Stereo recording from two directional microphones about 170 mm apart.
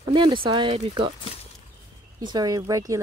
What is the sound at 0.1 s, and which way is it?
Speech, 30° right (ahead or behind).